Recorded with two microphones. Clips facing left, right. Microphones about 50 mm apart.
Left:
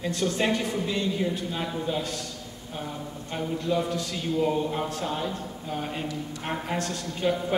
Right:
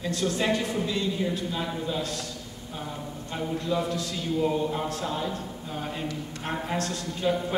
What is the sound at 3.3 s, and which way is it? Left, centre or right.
Speech, centre.